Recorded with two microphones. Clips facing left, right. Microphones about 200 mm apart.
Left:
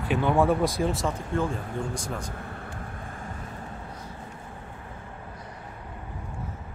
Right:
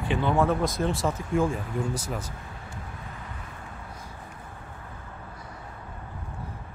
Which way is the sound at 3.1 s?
45° left (ahead or behind).